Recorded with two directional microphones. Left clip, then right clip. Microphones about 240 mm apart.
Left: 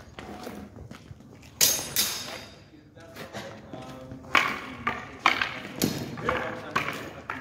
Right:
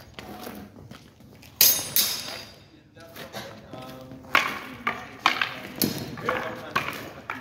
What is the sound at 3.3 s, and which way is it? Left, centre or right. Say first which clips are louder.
Music: right 1 dB; right.